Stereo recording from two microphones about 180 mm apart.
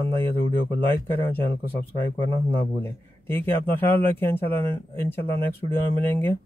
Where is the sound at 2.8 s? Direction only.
10° left (ahead or behind).